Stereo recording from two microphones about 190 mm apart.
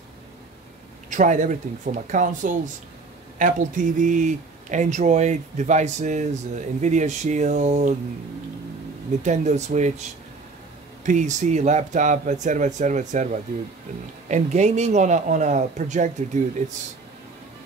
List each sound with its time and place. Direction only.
1.1 s speech: 40° right (ahead or behind)
9.2 s speech: 40° right (ahead or behind)
11.1 s speech: 40° right (ahead or behind)